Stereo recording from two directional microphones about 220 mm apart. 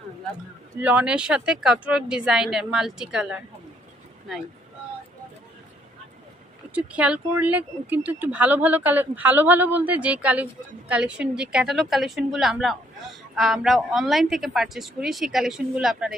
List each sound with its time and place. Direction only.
0.7 s a woman's voice: 5° right (ahead or behind)
6.7 s a woman's voice: 5° right (ahead or behind)